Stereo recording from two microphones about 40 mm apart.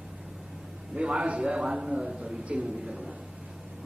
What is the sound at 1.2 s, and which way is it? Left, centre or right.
A man's voice, right.